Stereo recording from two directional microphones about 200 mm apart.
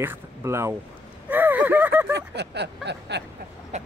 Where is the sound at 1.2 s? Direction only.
10° right (ahead or behind).